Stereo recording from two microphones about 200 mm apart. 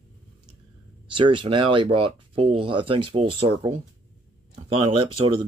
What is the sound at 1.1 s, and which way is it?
Speech, 25° right (ahead or behind).